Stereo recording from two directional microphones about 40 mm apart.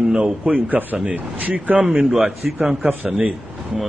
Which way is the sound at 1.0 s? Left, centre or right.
Right.